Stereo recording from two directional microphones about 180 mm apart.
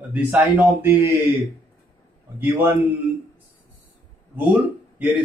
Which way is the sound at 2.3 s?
10° right (ahead or behind).